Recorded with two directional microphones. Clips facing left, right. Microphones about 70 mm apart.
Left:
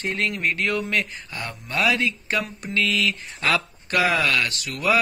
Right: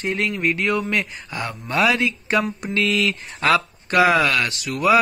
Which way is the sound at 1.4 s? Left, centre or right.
Right.